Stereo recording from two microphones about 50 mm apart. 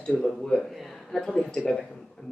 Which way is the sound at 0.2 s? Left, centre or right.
Centre.